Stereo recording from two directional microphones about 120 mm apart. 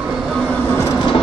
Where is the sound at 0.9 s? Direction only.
40° left (ahead or behind).